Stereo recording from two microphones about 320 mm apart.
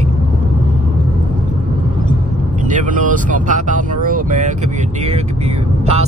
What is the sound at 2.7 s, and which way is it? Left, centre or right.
Speech, right.